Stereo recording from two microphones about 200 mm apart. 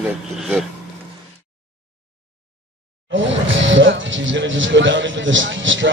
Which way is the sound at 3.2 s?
70° right (ahead or behind).